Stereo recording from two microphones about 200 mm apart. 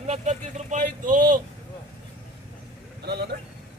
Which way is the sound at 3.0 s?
55° right (ahead or behind).